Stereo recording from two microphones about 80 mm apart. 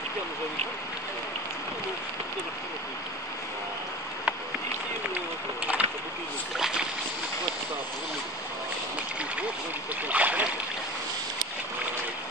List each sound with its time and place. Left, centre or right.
5.7 s a sound: centre
6.5 s boat: centre
10.0 s boat: centre